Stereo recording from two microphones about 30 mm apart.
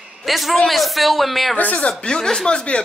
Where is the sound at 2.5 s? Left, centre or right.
Left.